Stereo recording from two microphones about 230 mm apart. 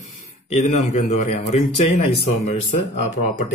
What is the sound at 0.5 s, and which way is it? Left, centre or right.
A man's voice, left.